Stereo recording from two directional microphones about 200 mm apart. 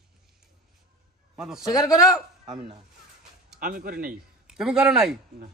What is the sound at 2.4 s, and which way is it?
Speech, 20° right (ahead or behind).